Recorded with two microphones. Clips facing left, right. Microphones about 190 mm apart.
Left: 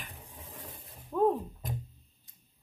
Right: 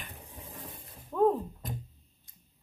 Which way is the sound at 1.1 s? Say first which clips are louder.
Right 1 dB; 5° left (ahead or behind).